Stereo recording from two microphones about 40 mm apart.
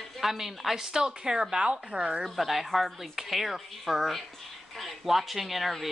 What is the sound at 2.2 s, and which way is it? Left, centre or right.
Speech, centre.